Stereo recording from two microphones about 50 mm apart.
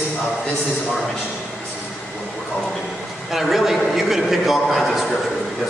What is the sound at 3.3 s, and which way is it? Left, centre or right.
A man's voice, centre.